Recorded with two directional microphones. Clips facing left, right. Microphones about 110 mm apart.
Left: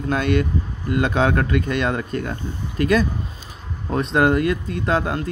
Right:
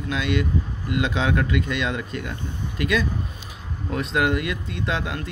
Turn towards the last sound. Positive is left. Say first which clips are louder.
# left 6 dB
turn(degrees=40)  # may be behind; listen again after turning